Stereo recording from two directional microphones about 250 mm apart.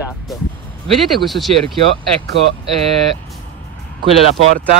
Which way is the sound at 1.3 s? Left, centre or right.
Centre.